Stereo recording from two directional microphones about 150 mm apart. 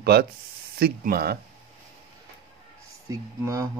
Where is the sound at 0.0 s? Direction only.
90° right.